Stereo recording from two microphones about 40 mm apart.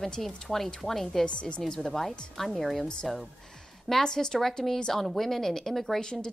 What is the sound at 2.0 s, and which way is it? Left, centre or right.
Speech, centre.